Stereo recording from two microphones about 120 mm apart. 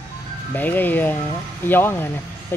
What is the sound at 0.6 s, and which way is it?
Speech, 15° left (ahead or behind).